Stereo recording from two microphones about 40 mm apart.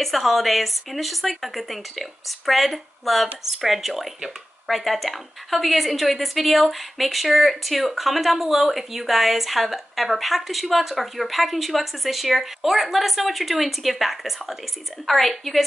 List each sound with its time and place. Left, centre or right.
0.0 s a woman's voice: centre